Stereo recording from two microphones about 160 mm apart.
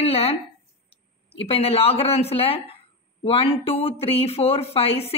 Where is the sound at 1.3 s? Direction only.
35° left (ahead or behind).